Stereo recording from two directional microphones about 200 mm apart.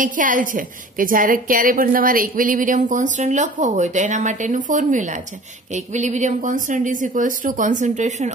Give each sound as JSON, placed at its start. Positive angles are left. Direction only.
{"t": 0.0, "sound": "a woman's voice", "side_deg": -40}